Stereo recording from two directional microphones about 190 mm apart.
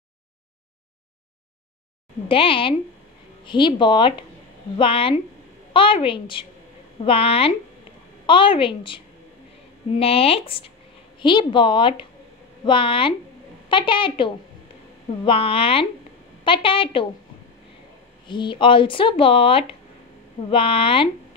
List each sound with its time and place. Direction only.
2.2 s speech: 30° left (ahead or behind)
18.2 s speech: 25° left (ahead or behind)